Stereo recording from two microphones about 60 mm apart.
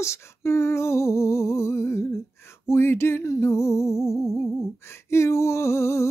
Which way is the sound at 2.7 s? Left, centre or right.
Left.